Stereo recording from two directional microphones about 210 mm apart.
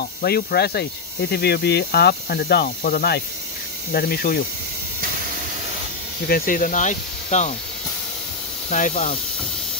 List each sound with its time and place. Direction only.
0.0 s speech: 50° left (ahead or behind)
6.2 s speech: 45° left (ahead or behind)
8.6 s speech: 35° left (ahead or behind)